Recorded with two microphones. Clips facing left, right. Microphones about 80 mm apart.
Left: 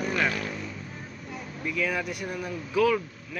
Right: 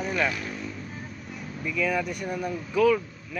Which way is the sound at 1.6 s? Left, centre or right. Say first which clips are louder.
Right 2 dB; centre.